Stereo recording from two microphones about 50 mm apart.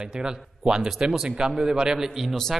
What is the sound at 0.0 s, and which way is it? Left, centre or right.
A man's voice, centre.